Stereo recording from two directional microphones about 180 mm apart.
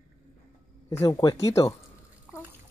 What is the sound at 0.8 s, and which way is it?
Speech, 15° left (ahead or behind).